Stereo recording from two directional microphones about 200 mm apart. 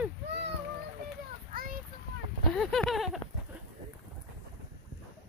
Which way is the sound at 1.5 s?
45° right (ahead or behind).